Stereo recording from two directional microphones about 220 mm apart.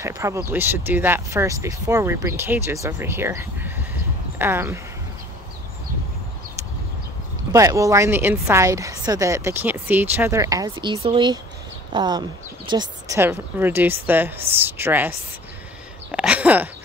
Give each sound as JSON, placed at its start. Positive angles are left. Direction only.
{"t": 0.0, "sound": "a woman's voice", "side_deg": -15}
{"t": 7.5, "sound": "a woman's voice", "side_deg": -15}
{"t": 16.1, "sound": "a sound", "side_deg": -5}